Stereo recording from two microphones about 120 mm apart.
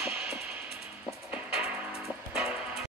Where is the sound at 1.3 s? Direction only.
10° right (ahead or behind).